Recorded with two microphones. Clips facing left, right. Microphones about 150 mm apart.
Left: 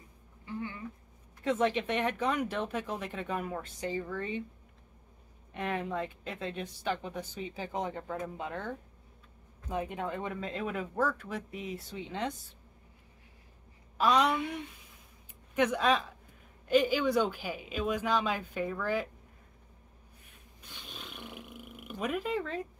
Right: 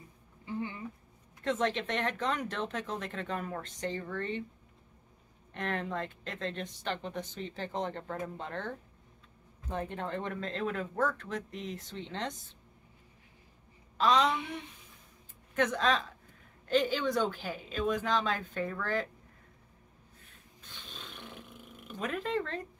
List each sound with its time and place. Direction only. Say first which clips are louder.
0.5 s a sound: right 2 dB; 20° right (ahead or behind)
1.4 s speech: left 2 dB; 10° left (ahead or behind)
5.5 s speech: left 1 dB; 10° left (ahead or behind)
13.9 s a woman's voice: even; 10° left (ahead or behind)
15.5 s speech: left 2 dB; 10° left (ahead or behind)
20.6 s roar: left 2 dB; 10° left (ahead or behind)